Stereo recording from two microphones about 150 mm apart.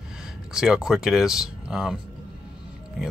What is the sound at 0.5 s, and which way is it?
Speech, 5° right (ahead or behind).